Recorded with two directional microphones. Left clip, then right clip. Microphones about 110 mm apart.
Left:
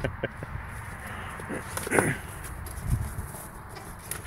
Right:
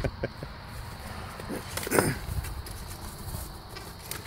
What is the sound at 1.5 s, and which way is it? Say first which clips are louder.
Speech: even; centre (ahead or behind).